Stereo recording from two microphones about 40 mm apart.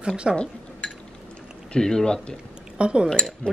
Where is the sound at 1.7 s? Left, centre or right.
Centre.